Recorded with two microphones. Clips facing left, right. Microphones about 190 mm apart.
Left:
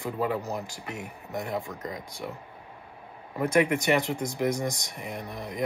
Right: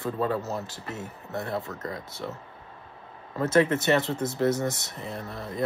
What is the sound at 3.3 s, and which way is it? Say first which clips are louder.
Speech: right 1 dB; 15° left (ahead or behind).